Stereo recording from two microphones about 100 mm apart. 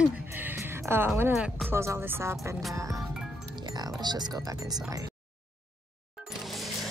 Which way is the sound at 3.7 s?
45° right (ahead or behind).